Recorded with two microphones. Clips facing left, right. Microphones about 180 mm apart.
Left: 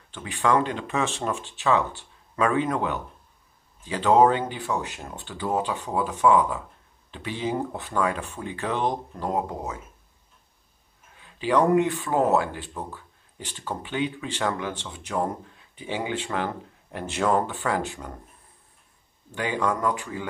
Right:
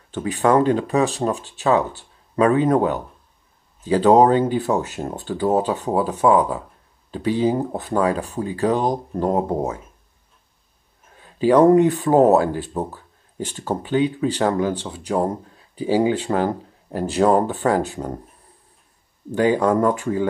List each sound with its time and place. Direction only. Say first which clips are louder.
0.1 s speech: right 6 dB; 40° right (ahead or behind)
11.1 s speech: right 8 dB; 40° right (ahead or behind)
19.3 s speech: right 9 dB; 40° right (ahead or behind)